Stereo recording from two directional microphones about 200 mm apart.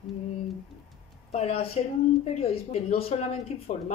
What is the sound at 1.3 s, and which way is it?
A woman's voice, 30° left (ahead or behind).